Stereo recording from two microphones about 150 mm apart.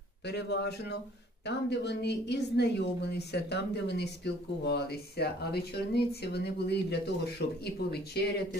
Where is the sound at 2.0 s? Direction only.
90° left.